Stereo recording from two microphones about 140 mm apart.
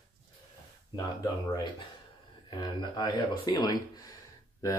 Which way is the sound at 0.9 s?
30° left (ahead or behind).